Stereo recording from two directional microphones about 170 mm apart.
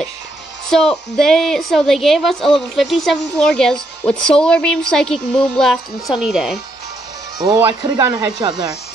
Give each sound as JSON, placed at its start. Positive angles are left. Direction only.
{"t": 0.7, "sound": "a woman's voice", "side_deg": 5}
{"t": 7.3, "sound": "speech", "side_deg": -25}